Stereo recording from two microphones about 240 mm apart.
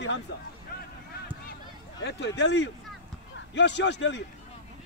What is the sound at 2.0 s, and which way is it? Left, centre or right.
Speech, left.